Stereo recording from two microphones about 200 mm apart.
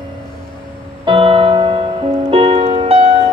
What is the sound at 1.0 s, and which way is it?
Music, 25° right (ahead or behind).